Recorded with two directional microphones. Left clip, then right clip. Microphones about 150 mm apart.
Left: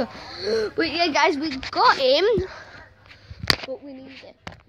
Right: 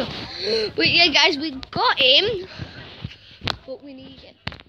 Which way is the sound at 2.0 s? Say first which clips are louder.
Right 3 dB; 40° left (ahead or behind).